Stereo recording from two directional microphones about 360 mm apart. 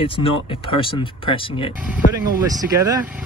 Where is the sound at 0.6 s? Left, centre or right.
Centre.